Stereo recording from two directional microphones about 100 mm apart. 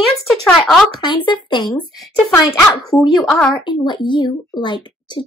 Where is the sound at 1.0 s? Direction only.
55° left (ahead or behind).